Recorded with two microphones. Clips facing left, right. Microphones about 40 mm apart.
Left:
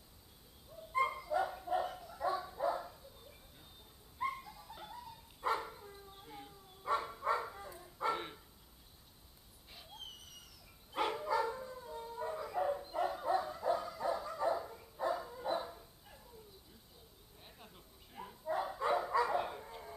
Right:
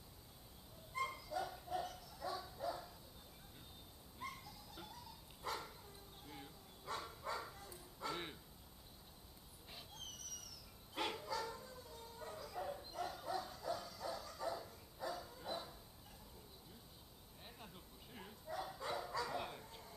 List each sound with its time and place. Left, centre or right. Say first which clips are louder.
0.9 s dog: left 9 dB; left
4.2 s dog: left 11 dB; left
6.8 s bow-wow: left 11 dB; left
9.9 s dog: left 5 dB; left
11.0 s dog: left 7 dB; centre
11.2 s dog: left 10 dB; left
17.4 s a sound: even; centre
18.5 s bow-wow: left 10 dB; left